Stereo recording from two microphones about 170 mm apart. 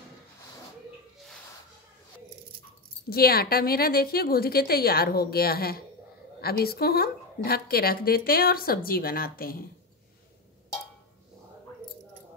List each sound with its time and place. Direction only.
3.1 s a woman's voice: 65° left (ahead or behind)